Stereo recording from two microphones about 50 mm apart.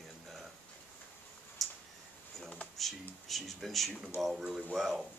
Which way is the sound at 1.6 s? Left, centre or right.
Centre.